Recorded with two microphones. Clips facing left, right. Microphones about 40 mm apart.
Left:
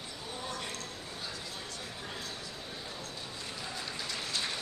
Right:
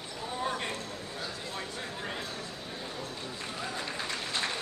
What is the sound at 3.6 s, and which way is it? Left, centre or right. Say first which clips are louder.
Applause: right 5 dB; right.